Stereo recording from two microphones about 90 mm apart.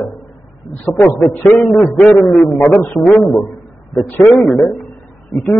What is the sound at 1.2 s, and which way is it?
Speech, 20° left (ahead or behind).